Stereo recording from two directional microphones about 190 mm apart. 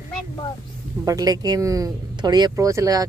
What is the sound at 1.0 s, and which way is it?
Speech, 20° right (ahead or behind).